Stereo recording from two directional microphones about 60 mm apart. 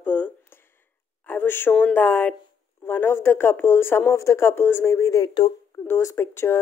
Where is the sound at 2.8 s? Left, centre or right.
Left.